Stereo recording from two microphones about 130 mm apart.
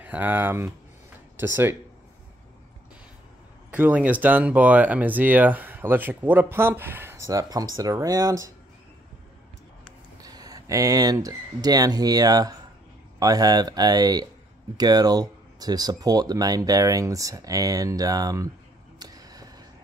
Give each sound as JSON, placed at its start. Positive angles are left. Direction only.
{"t": 0.0, "sound": "speech", "side_deg": -15}
{"t": 3.7, "sound": "speech", "side_deg": -10}
{"t": 10.2, "sound": "speech", "side_deg": -30}
{"t": 18.9, "sound": "a sound", "side_deg": -30}